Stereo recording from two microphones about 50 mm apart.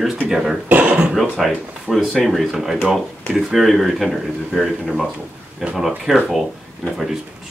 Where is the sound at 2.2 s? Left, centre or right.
Centre.